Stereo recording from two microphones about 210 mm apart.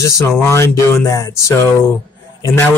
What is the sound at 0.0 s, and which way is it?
Speech, 15° left (ahead or behind).